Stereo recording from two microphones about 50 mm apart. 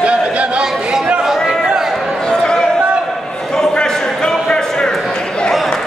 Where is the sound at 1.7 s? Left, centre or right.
Centre.